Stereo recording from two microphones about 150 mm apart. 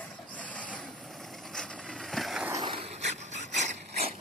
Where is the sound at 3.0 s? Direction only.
50° right (ahead or behind).